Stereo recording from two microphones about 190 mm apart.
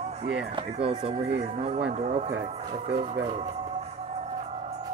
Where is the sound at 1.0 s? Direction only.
35° right (ahead or behind).